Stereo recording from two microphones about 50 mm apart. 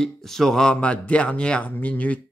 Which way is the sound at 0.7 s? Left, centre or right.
Left.